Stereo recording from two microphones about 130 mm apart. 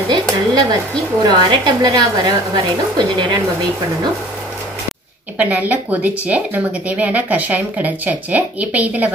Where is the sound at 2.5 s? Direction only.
35° right (ahead or behind).